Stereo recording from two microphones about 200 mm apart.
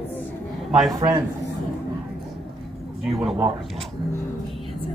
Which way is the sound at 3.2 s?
Centre (ahead or behind).